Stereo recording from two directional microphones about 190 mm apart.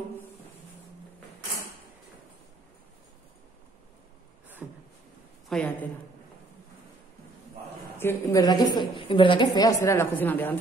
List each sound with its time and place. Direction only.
4.6 s a sound: 5° right (ahead or behind)
5.5 s a woman's voice: 5° left (ahead or behind)
8.0 s a woman's voice: 15° left (ahead or behind)